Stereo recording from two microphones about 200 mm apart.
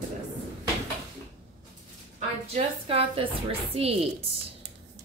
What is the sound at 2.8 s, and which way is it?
Speech, 25° right (ahead or behind).